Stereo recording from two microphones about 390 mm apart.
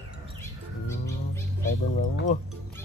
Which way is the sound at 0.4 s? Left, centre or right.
Centre.